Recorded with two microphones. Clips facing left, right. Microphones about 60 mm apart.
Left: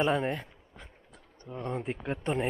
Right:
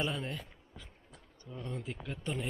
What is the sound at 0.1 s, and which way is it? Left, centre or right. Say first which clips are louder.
Speech: left 10 dB; left.